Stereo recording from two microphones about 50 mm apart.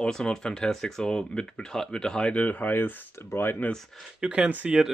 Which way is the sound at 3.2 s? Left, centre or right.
Left.